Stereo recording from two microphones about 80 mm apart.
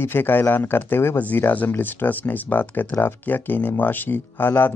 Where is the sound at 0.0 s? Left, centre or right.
Left.